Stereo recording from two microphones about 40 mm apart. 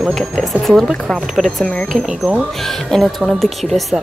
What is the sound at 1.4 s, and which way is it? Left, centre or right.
Speech, right.